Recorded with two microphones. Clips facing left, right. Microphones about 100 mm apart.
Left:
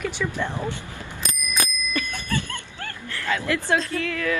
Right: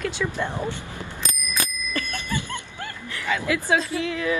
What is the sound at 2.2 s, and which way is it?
Dog, 15° right (ahead or behind).